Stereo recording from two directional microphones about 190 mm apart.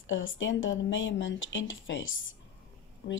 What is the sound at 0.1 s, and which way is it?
Speech, 85° left.